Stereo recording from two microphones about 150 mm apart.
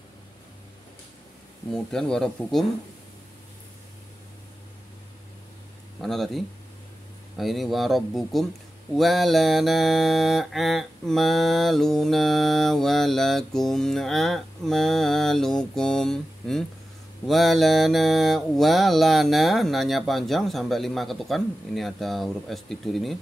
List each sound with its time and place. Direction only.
1.7 s music: 5° left (ahead or behind)
5.9 s speech: centre (ahead or behind)
7.3 s music: centre (ahead or behind)